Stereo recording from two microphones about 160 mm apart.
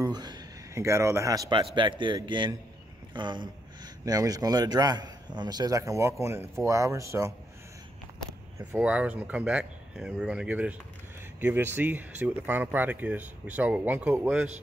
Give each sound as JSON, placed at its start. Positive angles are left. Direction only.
{"t": 0.0, "sound": "a man's voice", "side_deg": -25}
{"t": 8.5, "sound": "speech", "side_deg": -10}